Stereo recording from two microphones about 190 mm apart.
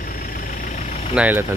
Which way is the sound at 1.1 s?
10° right (ahead or behind).